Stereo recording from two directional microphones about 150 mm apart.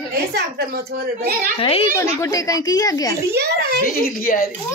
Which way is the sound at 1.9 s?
20° left (ahead or behind).